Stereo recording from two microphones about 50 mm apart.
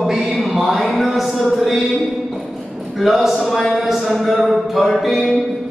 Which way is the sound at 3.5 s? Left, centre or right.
Centre.